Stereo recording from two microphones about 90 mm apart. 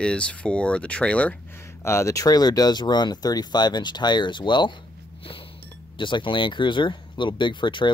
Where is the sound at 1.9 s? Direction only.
35° left (ahead or behind); by 4.7 s 60° left (ahead or behind).